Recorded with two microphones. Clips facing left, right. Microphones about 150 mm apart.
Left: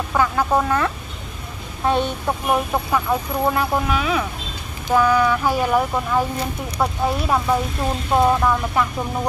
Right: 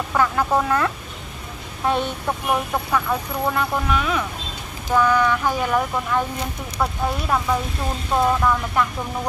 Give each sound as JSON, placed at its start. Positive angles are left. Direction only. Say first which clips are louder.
{"t": 0.1, "sound": "speech", "louder": "left 1 dB", "side_deg": 5}
{"t": 2.2, "sound": "speech", "louder": "left 2 dB", "side_deg": 15}
{"t": 3.9, "sound": "speech", "louder": "left 1 dB", "side_deg": 5}